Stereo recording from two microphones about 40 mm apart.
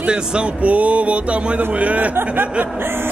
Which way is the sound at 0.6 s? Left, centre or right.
Right.